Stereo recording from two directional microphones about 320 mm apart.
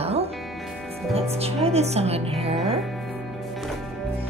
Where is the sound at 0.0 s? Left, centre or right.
Centre.